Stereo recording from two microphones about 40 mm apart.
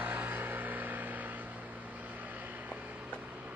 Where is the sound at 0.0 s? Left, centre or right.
Right.